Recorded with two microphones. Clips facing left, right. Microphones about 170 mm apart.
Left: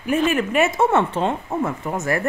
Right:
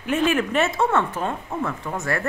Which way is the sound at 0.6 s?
20° left (ahead or behind).